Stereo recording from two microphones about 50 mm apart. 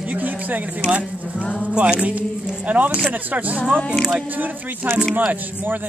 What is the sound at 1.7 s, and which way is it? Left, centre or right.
Speech, right.